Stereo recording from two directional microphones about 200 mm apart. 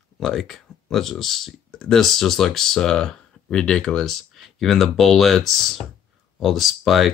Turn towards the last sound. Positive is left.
turn(degrees=0)  # may be behind; listen again after turning